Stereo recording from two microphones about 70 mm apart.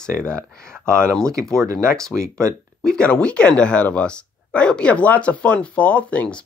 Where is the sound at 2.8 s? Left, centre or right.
Centre.